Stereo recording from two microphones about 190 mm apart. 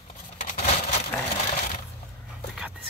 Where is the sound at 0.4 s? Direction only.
40° left (ahead or behind).